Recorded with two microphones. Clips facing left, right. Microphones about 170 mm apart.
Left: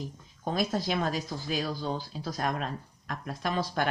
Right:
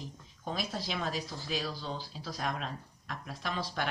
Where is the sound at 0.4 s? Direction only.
50° left (ahead or behind).